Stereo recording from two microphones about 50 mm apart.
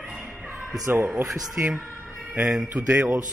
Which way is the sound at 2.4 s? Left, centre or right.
Centre.